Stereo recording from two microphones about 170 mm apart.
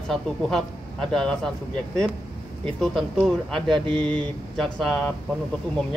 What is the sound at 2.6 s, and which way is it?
Speech, centre (ahead or behind).